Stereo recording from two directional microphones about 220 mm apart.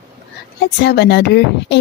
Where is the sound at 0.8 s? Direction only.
50° left (ahead or behind).